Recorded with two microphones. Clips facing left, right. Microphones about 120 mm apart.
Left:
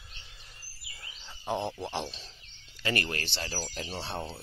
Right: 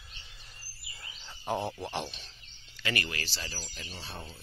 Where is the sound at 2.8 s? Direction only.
40° left (ahead or behind).